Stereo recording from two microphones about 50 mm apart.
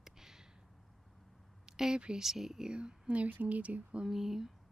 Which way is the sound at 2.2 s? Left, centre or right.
Centre.